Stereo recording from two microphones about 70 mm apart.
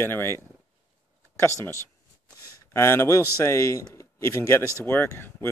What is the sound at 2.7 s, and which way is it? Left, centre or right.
A man's voice, left.